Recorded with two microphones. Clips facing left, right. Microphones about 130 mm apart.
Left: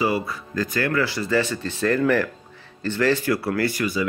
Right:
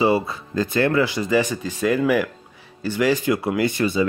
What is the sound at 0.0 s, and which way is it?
Speech, 25° right (ahead or behind).